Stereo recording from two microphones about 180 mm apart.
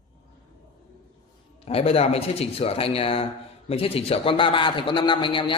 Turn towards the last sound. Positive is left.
turn(degrees=25)  # may be behind; listen again after turning